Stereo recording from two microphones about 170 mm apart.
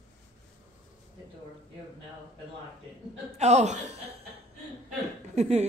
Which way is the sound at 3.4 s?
40° right (ahead or behind).